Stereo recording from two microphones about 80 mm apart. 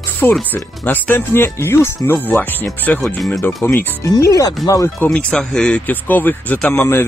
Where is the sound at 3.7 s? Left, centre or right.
Left.